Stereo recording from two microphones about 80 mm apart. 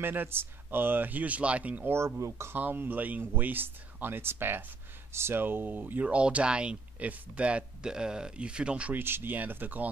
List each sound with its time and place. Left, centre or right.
0.0 s speech: right
2.0 s speech: right
2.5 s speech: right
9.0 s speech: right